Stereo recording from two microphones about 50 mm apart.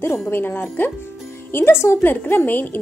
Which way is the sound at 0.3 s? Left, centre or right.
Left.